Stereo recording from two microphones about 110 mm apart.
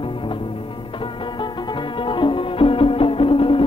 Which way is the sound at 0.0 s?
50° left (ahead or behind).